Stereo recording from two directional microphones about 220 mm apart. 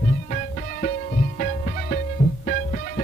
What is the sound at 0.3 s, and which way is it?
Music, 35° left (ahead or behind).